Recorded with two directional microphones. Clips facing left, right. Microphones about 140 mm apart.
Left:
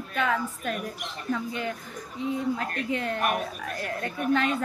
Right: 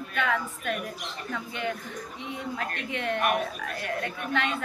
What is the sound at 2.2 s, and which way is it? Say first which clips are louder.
Speech: left 7 dB; 35° left (ahead or behind).